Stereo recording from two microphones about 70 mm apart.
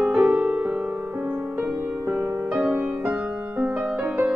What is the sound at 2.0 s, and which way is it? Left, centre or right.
Music, right.